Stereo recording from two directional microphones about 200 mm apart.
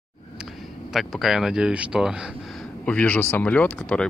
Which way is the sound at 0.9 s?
Centre (ahead or behind).